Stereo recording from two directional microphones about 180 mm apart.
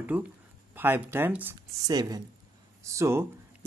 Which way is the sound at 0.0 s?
10° right (ahead or behind).